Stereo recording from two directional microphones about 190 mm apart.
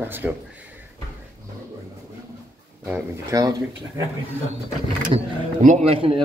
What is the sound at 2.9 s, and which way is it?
Speech, 15° right (ahead or behind).